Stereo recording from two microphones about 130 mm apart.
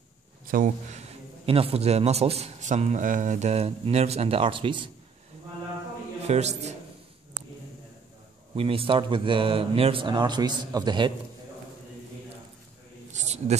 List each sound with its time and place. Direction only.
0.5 s a man's voice: 85° right; by 4.8 s 40° right (ahead or behind)
6.2 s a man's voice: 60° right (ahead or behind)
8.5 s a man's voice: 45° right (ahead or behind)
13.1 s a sound: 60° right (ahead or behind)